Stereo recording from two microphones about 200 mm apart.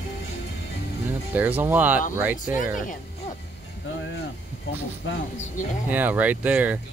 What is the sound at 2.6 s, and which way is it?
Speech, 40° left (ahead or behind).